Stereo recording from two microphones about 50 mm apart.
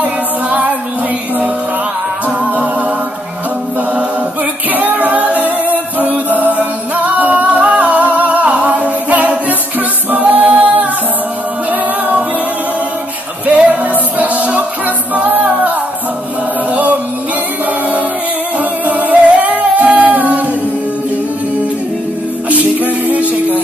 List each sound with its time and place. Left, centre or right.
0.0 s female singing: right
2.2 s music: right
4.6 s a capella: right
9.5 s music: right
13.5 s music: right
15.1 s a capella: right
18.6 s music: right
22.5 s music: right